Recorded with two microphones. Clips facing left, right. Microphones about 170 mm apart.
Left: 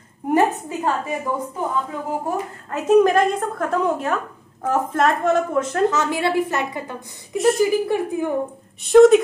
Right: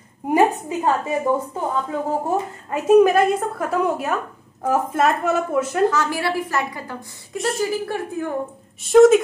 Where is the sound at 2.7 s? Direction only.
10° right (ahead or behind).